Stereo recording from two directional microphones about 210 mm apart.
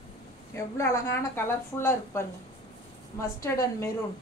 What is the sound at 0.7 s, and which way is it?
Speech, 15° left (ahead or behind).